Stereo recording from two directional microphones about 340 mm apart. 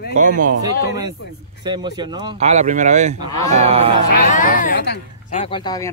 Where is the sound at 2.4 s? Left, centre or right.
Centre.